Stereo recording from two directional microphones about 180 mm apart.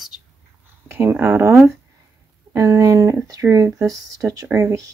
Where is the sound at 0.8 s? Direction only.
15° right (ahead or behind).